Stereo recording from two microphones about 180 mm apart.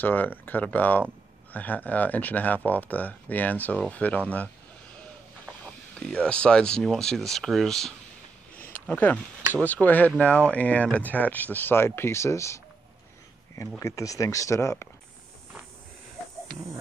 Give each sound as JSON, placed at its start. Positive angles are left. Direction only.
{"t": 0.0, "sound": "speech", "side_deg": 10}
{"t": 5.9, "sound": "speech", "side_deg": 5}
{"t": 8.5, "sound": "a sound", "side_deg": 50}
{"t": 8.8, "sound": "speech", "side_deg": 10}
{"t": 13.7, "sound": "speech", "side_deg": 15}